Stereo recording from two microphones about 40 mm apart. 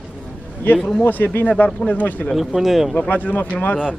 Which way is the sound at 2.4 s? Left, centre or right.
Centre.